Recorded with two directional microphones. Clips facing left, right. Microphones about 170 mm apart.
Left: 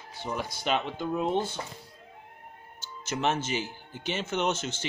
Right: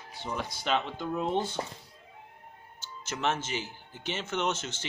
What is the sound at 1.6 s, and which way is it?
Speech, 35° right (ahead or behind).